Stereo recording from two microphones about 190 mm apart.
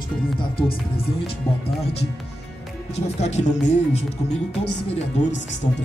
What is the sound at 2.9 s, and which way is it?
Music, 35° left (ahead or behind).